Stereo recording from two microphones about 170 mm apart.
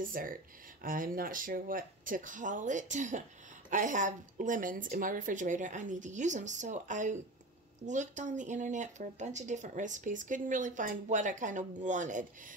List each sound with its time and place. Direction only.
0.0 s speech: 55° right (ahead or behind)